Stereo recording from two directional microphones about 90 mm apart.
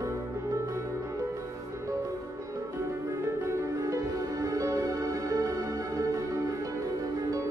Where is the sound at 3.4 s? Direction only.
35° right (ahead or behind).